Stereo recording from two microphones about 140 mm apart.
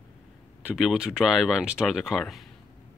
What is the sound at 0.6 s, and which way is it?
Speech, 5° right (ahead or behind).